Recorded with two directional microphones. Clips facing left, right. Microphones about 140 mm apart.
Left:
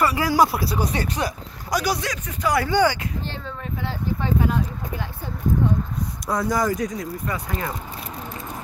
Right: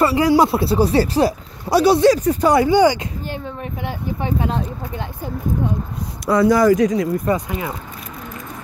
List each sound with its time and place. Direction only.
0.0 s speech: 25° right (ahead or behind)
2.5 s speech: 15° right (ahead or behind)
6.2 s speech: 75° right (ahead or behind)
7.4 s speech: 10° right (ahead or behind)